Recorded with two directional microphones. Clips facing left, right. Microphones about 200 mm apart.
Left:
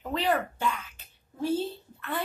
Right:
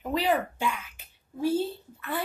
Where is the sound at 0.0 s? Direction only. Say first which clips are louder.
Right 2 dB; 10° right (ahead or behind).